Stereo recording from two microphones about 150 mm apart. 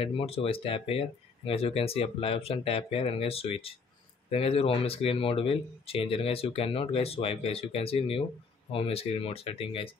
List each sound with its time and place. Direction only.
0.0 s speech: 40° left (ahead or behind)